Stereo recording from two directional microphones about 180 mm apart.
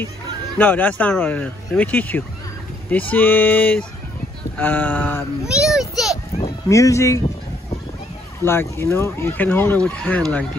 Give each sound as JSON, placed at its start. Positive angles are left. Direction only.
{"t": 0.6, "sound": "speech", "side_deg": 10}
{"t": 5.5, "sound": "a sound", "side_deg": -5}
{"t": 6.7, "sound": "speech", "side_deg": 15}
{"t": 8.4, "sound": "speech", "side_deg": 15}